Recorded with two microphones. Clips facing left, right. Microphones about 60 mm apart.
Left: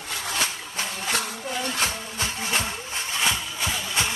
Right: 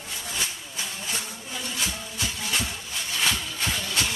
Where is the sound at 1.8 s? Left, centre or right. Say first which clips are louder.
Left 3 dB; left.